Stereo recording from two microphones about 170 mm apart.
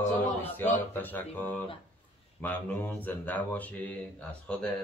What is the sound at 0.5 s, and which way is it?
Speech, 10° left (ahead or behind).